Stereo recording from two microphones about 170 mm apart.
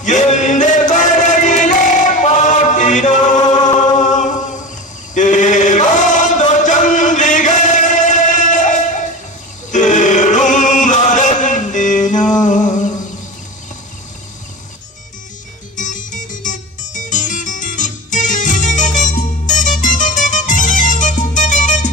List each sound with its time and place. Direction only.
0.0 s music: 45° left (ahead or behind)
3.3 s chant: 25° left (ahead or behind)
3.8 s chant: 45° left (ahead or behind)
9.7 s music: 45° left (ahead or behind)
15.7 s music: 50° left (ahead or behind)